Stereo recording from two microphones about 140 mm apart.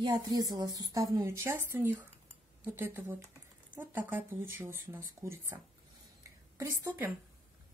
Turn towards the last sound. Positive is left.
turn(degrees=-20)  # may be behind; listen again after turning